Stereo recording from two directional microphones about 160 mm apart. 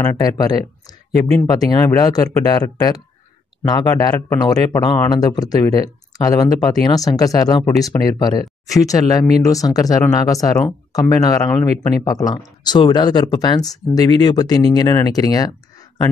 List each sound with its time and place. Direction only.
0.0 s speech: 20° left (ahead or behind)